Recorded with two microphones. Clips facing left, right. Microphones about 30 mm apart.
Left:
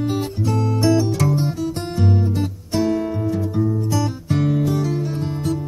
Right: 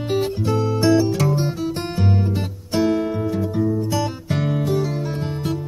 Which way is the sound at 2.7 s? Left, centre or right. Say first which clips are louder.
Right 1 dB; centre.